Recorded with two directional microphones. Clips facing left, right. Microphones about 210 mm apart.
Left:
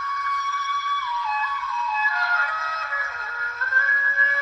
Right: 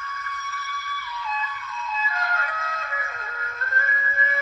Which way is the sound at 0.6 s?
20° right (ahead or behind).